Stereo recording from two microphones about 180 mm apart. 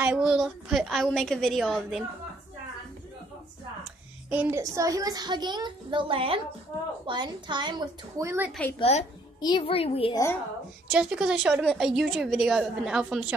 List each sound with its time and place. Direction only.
0.0 s a woman's voice: 5° right (ahead or behind)
4.3 s a child's voice: 10° right (ahead or behind)
8.7 s a woman's voice: 30° left (ahead or behind)
10.1 s a woman's voice: 15° left (ahead or behind)
10.9 s a woman's voice: 5° right (ahead or behind)